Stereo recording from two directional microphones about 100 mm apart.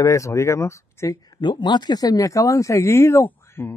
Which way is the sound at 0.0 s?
30° left (ahead or behind).